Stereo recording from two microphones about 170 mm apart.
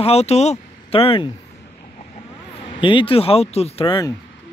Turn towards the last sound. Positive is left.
turn(degrees=35)  # may be behind; listen again after turning